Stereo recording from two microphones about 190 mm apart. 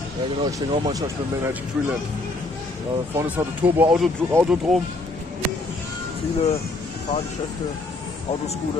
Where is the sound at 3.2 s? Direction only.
10° right (ahead or behind).